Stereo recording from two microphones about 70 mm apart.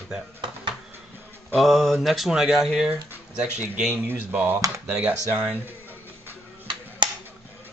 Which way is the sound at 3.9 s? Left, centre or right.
Right.